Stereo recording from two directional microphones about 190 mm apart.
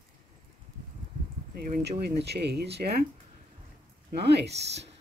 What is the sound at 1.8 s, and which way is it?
Speech, 60° right (ahead or behind).